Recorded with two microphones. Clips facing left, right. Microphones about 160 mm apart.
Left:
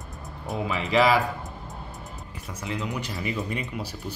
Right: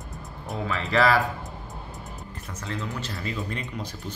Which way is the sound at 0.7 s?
15° left (ahead or behind).